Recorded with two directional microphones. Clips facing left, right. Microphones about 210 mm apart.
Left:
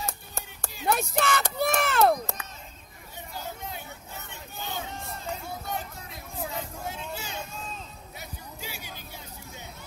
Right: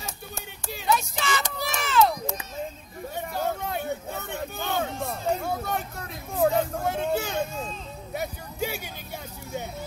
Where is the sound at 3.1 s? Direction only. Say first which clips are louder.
Right 10 dB; 60° right (ahead or behind).